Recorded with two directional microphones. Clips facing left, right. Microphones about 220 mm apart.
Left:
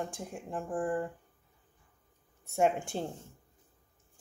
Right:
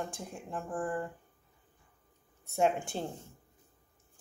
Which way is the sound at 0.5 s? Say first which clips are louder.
Left 3 dB; 20° left (ahead or behind).